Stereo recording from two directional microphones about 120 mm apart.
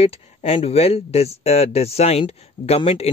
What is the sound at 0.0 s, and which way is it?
Speech, 70° left (ahead or behind).